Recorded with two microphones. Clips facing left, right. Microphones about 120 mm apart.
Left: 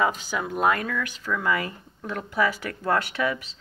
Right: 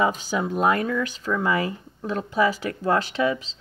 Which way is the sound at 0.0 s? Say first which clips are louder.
Right 2 dB; 20° right (ahead or behind).